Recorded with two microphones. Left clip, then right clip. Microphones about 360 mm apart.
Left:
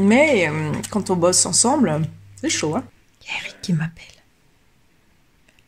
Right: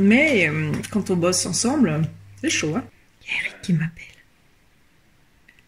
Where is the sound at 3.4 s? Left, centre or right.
Left.